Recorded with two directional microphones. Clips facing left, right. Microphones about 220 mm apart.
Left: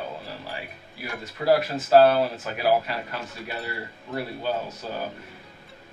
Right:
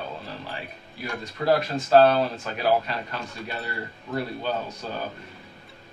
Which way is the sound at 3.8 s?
10° left (ahead or behind).